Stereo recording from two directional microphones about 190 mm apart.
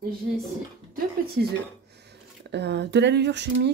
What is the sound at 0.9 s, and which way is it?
Speech, 55° right (ahead or behind).